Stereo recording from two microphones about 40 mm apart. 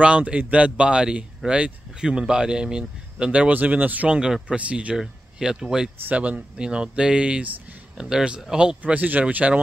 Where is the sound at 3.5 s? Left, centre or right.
Right.